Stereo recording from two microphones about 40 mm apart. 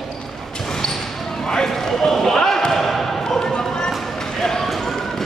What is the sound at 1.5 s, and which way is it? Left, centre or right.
Basketball bounce, centre.